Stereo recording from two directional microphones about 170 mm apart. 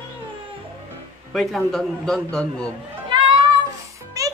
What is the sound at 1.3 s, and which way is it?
A man's voice, centre (ahead or behind).